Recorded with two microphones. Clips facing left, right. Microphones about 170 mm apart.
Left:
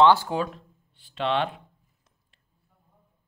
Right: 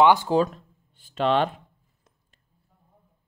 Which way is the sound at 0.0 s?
15° right (ahead or behind).